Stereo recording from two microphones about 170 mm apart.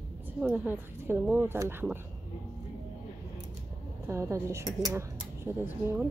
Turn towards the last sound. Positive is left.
turn(degrees=-15)  # may be behind; listen again after turning